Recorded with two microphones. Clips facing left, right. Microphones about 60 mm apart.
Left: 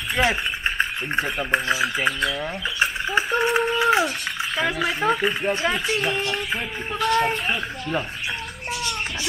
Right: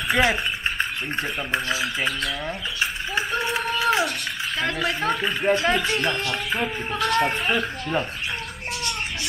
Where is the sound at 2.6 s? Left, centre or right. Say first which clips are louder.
Left 4 dB; left.